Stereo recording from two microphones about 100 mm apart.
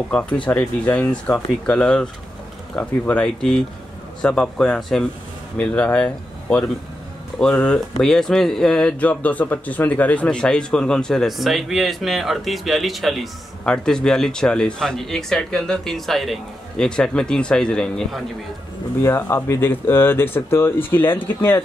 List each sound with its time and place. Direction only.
0.6 s speech: 10° left (ahead or behind)
19.0 s speech: 25° left (ahead or behind)